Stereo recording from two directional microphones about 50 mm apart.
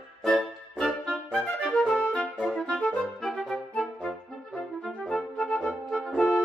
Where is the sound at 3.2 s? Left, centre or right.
Centre.